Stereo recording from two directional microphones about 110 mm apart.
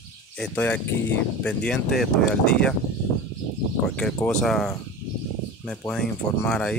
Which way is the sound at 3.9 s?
5° left (ahead or behind).